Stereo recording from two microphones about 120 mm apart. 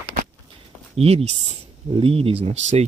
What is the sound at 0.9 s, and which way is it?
Speech, 55° right (ahead or behind).